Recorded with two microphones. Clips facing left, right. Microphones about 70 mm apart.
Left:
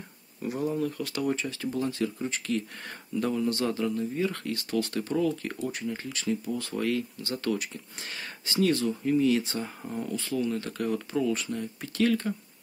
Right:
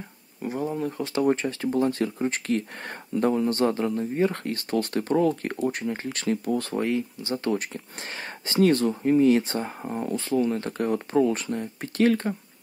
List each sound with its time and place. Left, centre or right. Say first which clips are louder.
0.5 s speech: right 1 dB; right
6.7 s speech: right 3 dB; right
7.5 s speech: right 4 dB; right